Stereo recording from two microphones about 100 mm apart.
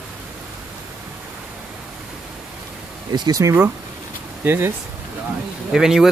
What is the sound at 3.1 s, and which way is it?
Speech, 45° right (ahead or behind).